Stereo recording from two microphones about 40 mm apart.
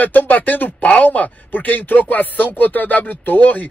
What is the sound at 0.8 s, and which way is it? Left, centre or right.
Speech, left.